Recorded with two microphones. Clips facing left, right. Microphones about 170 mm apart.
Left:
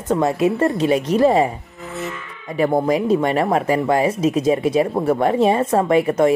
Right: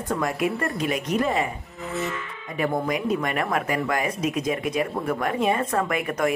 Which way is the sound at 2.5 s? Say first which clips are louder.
Left 8 dB; 30° left (ahead or behind).